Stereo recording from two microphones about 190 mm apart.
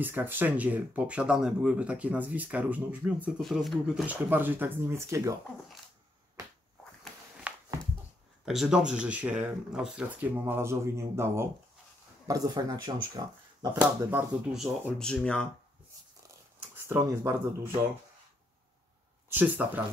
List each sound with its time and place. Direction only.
0.0 s speech: 10° right (ahead or behind)
7.5 s a sound: 5° right (ahead or behind)
8.5 s speech: 5° right (ahead or behind); by 13.7 s 20° right (ahead or behind)
14.1 s speech: centre (ahead or behind)
16.7 s speech: 10° right (ahead or behind)
19.2 s speech: 10° right (ahead or behind)